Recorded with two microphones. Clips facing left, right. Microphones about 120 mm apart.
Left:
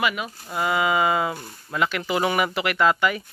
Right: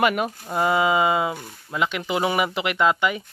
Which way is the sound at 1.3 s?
Centre (ahead or behind).